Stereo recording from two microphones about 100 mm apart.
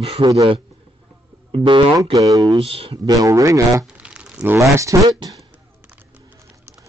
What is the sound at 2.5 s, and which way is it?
Speech, 75° right (ahead or behind).